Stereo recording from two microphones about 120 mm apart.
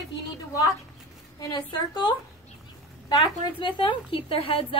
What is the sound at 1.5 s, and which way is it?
A woman's voice, 40° left (ahead or behind).